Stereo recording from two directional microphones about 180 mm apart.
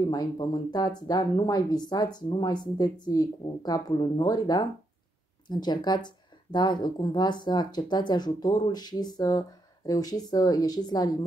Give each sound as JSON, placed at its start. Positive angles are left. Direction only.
{"t": 0.0, "sound": "speech", "side_deg": 20}